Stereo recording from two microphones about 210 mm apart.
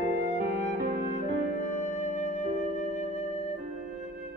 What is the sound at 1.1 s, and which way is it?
Music, 35° left (ahead or behind).